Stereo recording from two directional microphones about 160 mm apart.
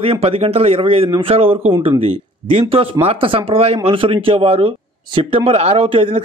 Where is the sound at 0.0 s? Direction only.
35° right (ahead or behind).